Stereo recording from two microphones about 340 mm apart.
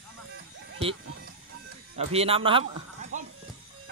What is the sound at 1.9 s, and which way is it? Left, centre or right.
Speech, centre.